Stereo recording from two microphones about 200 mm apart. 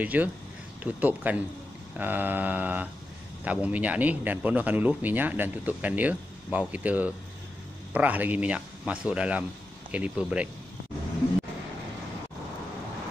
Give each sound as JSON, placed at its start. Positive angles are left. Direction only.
{"t": 0.0, "sound": "a man's voice", "side_deg": -10}